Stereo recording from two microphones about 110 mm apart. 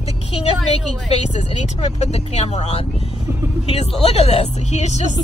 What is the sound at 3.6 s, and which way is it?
A woman's voice, 70° left (ahead or behind).